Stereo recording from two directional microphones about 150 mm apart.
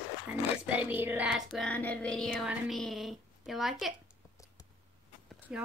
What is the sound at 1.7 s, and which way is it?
A child's voice, 10° left (ahead or behind).